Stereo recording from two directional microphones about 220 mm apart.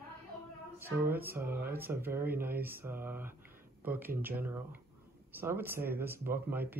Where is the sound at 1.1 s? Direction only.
10° right (ahead or behind).